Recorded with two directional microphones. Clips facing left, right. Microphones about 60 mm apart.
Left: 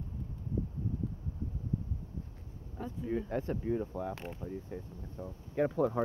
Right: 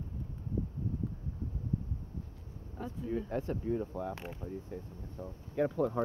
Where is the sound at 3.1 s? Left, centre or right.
Centre.